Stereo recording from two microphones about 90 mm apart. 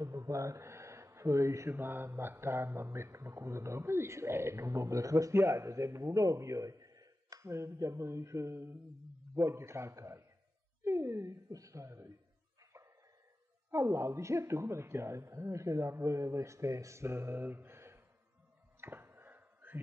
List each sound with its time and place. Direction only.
0.0 s speech: 40° right (ahead or behind)
1.7 s speech: 25° right (ahead or behind)
13.7 s speech: 30° right (ahead or behind)
18.8 s a sound: 25° right (ahead or behind)